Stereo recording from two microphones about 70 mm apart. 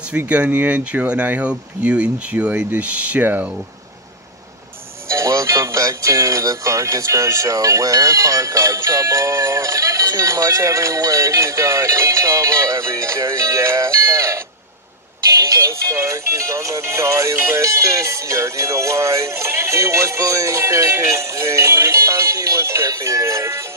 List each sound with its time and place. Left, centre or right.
0.5 s speech: right
5.0 s music: right
15.3 s speech: right